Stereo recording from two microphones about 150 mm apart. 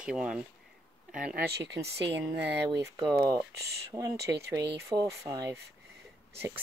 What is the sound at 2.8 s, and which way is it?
Speech, 20° right (ahead or behind).